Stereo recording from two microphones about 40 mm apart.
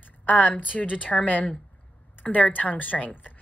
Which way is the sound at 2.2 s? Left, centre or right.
Left.